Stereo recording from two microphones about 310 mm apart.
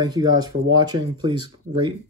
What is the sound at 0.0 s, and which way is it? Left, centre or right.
Speech, centre.